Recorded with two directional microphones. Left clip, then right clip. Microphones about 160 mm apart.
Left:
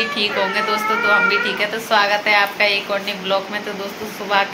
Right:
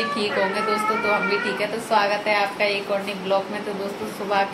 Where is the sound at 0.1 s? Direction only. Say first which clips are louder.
Left 4 dB; 10° right (ahead or behind).